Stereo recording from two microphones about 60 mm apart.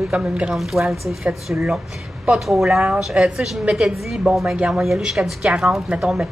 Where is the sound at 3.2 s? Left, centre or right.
Centre.